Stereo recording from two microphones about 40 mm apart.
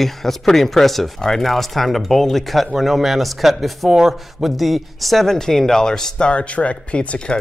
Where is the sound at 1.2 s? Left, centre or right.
Centre.